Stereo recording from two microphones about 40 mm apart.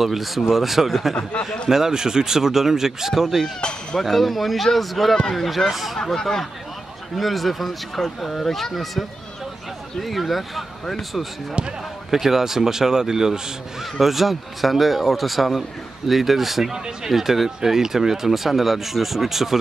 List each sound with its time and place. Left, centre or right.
0.0 s speech: centre
5.9 s speech: centre
11.6 s speech: right
12.1 s speech: centre
16.7 s speech: centre
17.1 s speech: centre